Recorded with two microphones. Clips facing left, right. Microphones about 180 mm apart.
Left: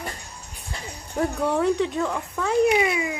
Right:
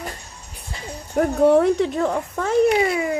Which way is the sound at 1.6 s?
40° right (ahead or behind).